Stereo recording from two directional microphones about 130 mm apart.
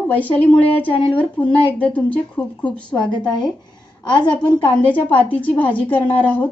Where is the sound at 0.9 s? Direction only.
40° left (ahead or behind).